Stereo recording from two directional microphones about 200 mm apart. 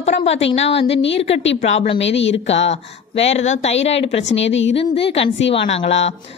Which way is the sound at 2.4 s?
30° left (ahead or behind).